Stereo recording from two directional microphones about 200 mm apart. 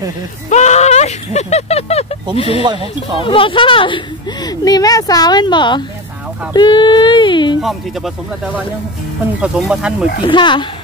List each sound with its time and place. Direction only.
0.5 s a sound: 35° left (ahead or behind)
2.3 s a woman's voice: 30° left (ahead or behind)
9.4 s speech: centre (ahead or behind)
10.2 s a woman's voice: 25° left (ahead or behind)